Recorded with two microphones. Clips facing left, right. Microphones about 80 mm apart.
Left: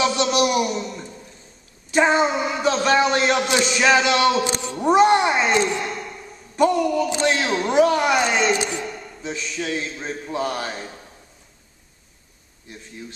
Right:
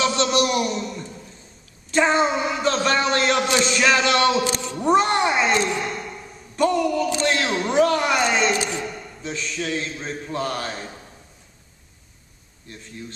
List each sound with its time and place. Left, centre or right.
0.0 s a sound: centre
1.9 s a man's voice: centre
4.5 s speech: centre
4.7 s speech: centre
5.6 s a sound: centre
6.6 s a man's voice: centre
7.4 s a man's voice: centre
7.8 s a man's voice: centre
8.5 s speech: left
8.8 s a sound: centre
9.3 s a man's voice: centre